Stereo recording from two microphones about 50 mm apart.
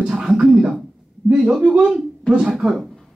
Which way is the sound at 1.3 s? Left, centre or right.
Centre.